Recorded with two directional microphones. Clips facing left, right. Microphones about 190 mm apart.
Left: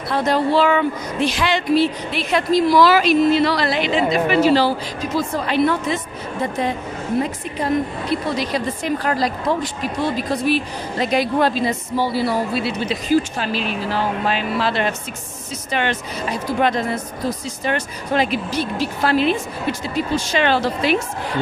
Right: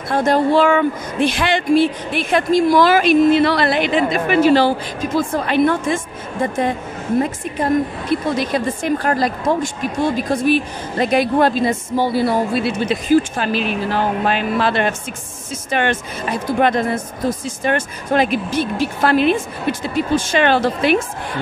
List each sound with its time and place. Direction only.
0.1 s a woman's voice: 50° right (ahead or behind)
7.5 s a woman's voice: 50° right (ahead or behind)